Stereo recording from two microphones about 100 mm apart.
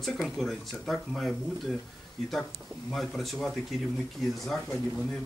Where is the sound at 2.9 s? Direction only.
Centre (ahead or behind).